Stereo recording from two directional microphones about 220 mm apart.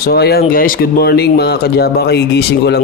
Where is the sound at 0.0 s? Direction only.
45° left (ahead or behind).